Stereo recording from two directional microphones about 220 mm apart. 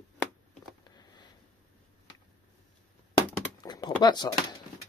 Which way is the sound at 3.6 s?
20° left (ahead or behind).